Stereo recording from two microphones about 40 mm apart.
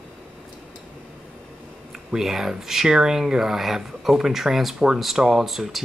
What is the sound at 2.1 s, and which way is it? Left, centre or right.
Speech, centre.